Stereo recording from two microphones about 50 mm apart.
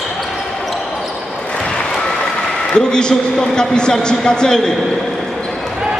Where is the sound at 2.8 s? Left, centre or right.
Centre.